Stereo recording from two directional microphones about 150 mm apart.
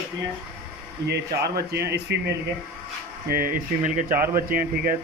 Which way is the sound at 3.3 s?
75° right (ahead or behind).